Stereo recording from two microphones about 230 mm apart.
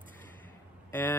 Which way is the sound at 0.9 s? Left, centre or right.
Centre.